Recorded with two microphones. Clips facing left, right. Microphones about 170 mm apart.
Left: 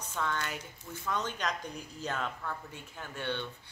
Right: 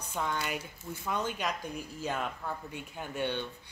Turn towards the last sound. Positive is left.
turn(degrees=-15)  # may be behind; listen again after turning